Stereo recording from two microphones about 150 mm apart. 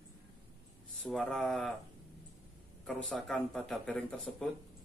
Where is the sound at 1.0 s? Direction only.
5° left (ahead or behind).